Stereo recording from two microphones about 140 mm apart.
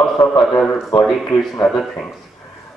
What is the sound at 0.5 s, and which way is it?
Speech, 10° left (ahead or behind).